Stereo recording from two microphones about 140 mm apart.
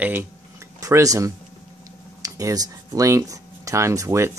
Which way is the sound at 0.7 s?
25° right (ahead or behind).